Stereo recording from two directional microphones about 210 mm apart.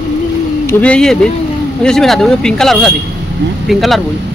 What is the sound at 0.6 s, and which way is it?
Speech, 5° left (ahead or behind).